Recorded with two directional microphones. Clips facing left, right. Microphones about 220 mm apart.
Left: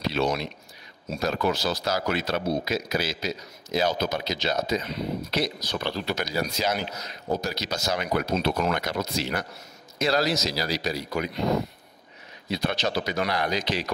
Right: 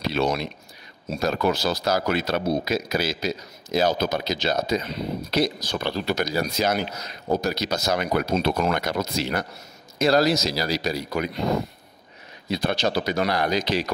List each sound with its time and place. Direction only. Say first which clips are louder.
0.1 s speech: right 2 dB; 55° right (ahead or behind)
12.4 s speech: right 3 dB; 35° right (ahead or behind)